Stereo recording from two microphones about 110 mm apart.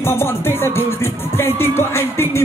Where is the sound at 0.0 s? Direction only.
20° left (ahead or behind).